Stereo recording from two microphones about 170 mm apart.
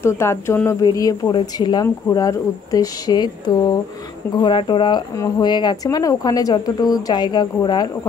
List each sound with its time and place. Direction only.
0.0 s speech: 15° left (ahead or behind)